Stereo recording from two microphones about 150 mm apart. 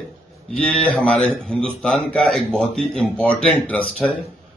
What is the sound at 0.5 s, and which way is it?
Speech, 10° left (ahead or behind).